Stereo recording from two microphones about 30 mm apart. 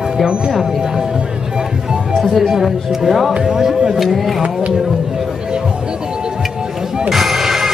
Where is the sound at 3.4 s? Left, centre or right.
Centre.